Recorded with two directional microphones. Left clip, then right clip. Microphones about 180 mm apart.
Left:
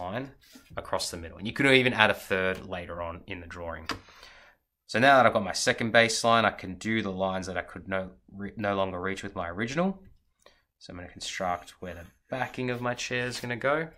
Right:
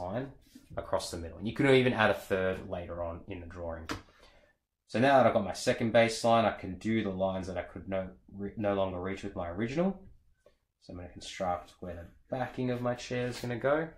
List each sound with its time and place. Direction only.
0.7 s speech: 20° left (ahead or behind)
4.8 s speech: 10° left (ahead or behind)
10.9 s speech: 15° left (ahead or behind)